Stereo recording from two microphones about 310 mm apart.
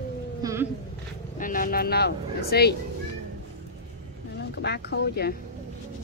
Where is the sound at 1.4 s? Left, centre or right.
Left.